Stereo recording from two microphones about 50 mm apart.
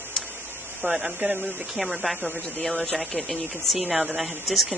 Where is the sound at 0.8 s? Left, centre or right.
Right.